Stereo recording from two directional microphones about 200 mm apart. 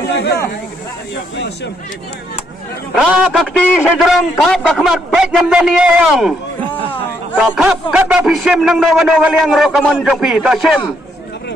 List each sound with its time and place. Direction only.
0.1 s speech: 55° left (ahead or behind)
2.9 s a man's voice: centre (ahead or behind)